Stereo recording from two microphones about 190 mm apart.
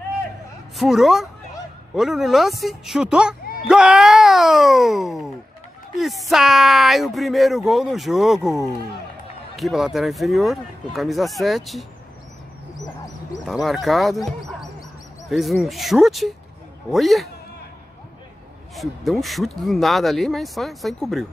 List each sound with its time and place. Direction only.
0.7 s speech: centre (ahead or behind)
9.6 s speech: centre (ahead or behind)
12.7 s dog: 20° left (ahead or behind)
13.5 s speech: centre (ahead or behind)
18.8 s speech: centre (ahead or behind)